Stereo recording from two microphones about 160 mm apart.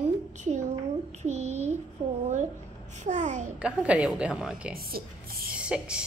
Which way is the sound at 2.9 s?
50° right (ahead or behind).